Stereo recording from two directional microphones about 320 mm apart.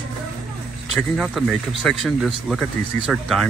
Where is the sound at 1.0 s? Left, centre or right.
Centre.